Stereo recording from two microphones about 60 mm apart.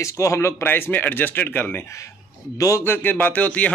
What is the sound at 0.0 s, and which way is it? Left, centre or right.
A man's voice, left.